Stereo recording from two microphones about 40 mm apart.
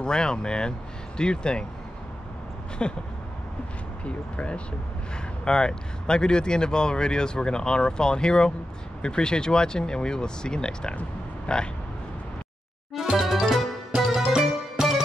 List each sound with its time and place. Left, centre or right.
0.0 s speech: centre
2.8 s speech: left
4.0 s speech: left
12.9 s music: centre
13.2 s music: centre